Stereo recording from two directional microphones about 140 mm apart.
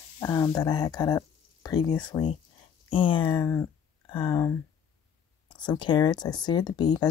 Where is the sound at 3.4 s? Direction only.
15° left (ahead or behind).